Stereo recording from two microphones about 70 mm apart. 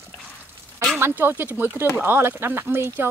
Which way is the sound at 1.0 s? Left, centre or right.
Right.